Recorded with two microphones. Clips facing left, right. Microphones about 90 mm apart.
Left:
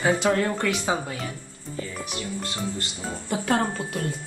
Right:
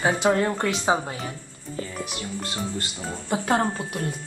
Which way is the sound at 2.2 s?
25° right (ahead or behind).